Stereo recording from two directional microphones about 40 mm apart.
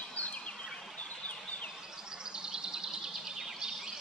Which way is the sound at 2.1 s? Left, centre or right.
Centre.